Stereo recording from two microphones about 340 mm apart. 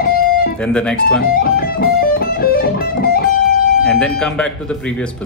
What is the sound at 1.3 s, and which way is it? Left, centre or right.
Music, left.